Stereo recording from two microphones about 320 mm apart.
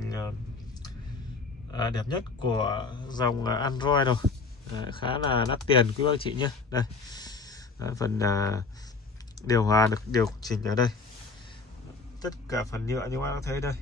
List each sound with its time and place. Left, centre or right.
1.7 s speech: centre
12.2 s speech: centre